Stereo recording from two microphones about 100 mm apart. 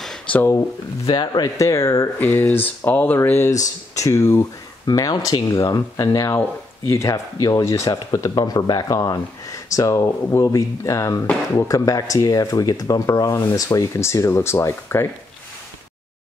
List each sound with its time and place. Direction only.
0.5 s speech: 30° left (ahead or behind)
1.1 s speech: 45° left (ahead or behind)
2.1 s speech: 15° left (ahead or behind)
3.2 s speech: 25° left (ahead or behind)
4.8 s speech: 40° left (ahead or behind)